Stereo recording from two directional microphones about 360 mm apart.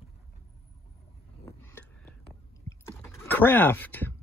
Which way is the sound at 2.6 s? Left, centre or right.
Centre.